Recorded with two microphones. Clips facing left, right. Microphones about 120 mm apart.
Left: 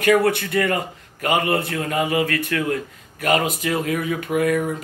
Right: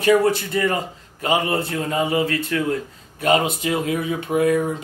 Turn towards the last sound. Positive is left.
turn(degrees=-30)  # may be behind; listen again after turning